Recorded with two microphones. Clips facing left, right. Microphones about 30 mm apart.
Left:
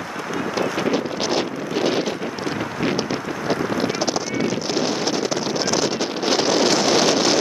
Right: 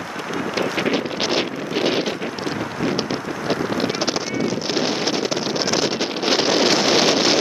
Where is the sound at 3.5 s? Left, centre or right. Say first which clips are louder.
Even; centre.